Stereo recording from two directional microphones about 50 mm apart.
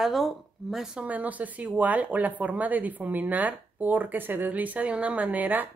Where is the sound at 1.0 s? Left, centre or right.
Right.